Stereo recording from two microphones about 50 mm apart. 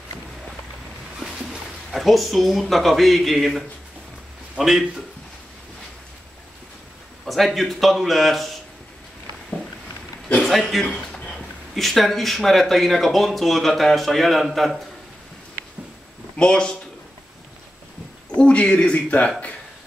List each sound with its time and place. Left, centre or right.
1.2 s a sound: centre
1.9 s speech: centre
7.2 s speech: centre
10.7 s speech: centre
11.1 s a sound: centre
11.7 s speech: centre
16.3 s speech: centre
18.4 s a man's voice: left